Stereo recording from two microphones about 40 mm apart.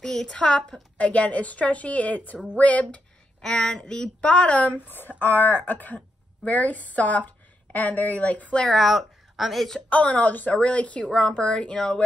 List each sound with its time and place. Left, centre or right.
0.0 s speech: centre
0.9 s a woman's voice: left
3.3 s speech: centre; by 4.7 s left
4.7 s a woman's voice: left
8.6 s speech: centre
9.8 s a woman's voice: left
11.1 s speech: left